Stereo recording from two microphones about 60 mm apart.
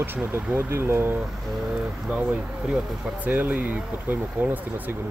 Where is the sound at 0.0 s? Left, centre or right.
Right.